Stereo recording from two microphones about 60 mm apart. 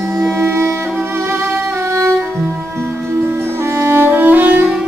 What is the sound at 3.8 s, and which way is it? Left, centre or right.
Music, right.